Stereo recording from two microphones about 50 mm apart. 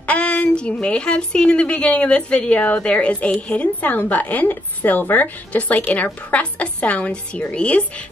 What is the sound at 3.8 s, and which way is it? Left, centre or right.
A woman's voice, left.